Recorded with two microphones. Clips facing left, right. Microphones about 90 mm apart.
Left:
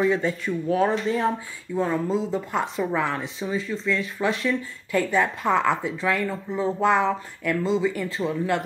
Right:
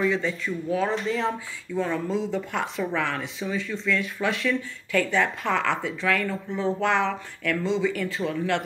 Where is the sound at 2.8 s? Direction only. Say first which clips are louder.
Left 2 dB; 15° left (ahead or behind).